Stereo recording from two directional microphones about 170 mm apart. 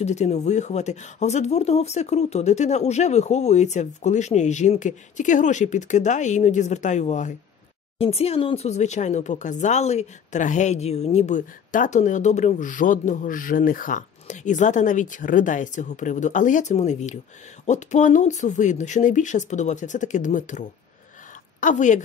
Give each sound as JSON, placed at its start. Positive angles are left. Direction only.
{"t": 0.0, "sound": "a woman's voice", "side_deg": 40}